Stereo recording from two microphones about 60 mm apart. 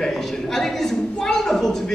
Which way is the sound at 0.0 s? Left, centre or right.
Centre.